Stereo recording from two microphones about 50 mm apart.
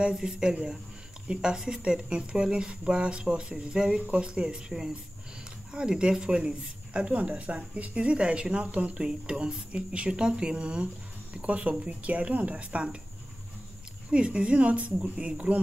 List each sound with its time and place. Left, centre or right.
0.0 s speech: centre
14.1 s speech: right